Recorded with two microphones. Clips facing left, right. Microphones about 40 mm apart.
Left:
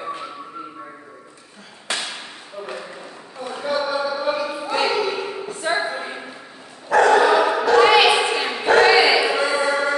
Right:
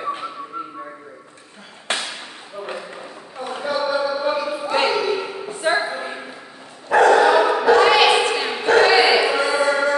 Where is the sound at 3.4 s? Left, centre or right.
Centre.